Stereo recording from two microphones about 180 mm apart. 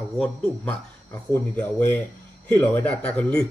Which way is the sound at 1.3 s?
10° left (ahead or behind).